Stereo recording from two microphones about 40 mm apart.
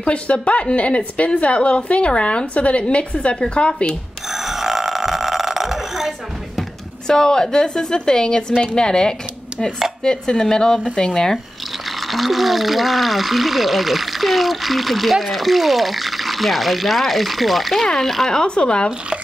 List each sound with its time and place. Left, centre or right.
0.0 s a woman's voice: left
4.3 s burping: centre
7.1 s a woman's voice: centre
10.0 s chopping: centre
12.1 s speech: centre
17.8 s chopping: centre
18.5 s a woman's voice: left